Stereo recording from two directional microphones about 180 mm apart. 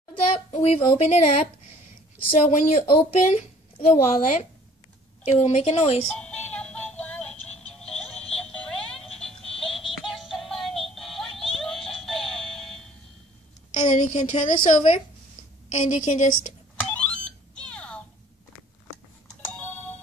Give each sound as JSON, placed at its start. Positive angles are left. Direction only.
{"t": 0.1, "sound": "a child's voice", "side_deg": 35}
{"t": 2.4, "sound": "speech", "side_deg": 40}
{"t": 6.1, "sound": "music", "side_deg": 5}
{"t": 13.9, "sound": "a woman's voice", "side_deg": 40}
{"t": 16.9, "sound": "alarm clock", "side_deg": 5}